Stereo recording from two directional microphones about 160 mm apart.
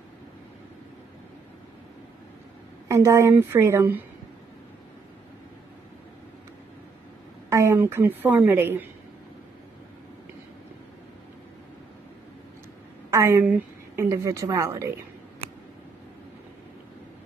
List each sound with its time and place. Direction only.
2.9 s a woman's voice: 20° right (ahead or behind)
7.4 s a woman's voice: 15° right (ahead or behind)
13.1 s a woman's voice: 15° right (ahead or behind)